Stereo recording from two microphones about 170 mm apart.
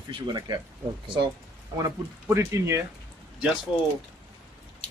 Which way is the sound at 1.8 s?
15° right (ahead or behind).